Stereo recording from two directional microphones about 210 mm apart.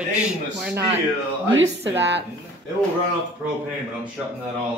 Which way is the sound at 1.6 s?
60° right (ahead or behind).